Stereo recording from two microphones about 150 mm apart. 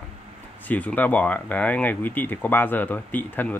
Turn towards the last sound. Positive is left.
turn(degrees=10)  # may be behind; listen again after turning